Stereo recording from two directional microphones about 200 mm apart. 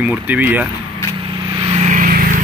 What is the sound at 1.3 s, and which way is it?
Vehicle, 25° right (ahead or behind).